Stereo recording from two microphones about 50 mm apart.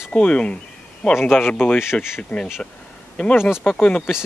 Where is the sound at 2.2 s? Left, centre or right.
Left.